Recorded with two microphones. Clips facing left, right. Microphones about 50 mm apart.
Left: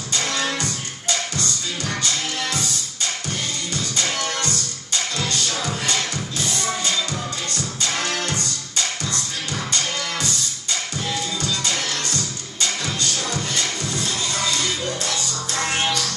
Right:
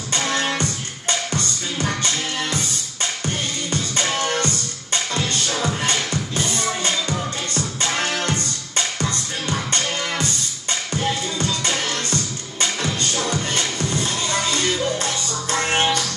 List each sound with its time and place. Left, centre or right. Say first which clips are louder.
0.1 s music: right 2 dB; right
3.3 s music: right 3 dB; right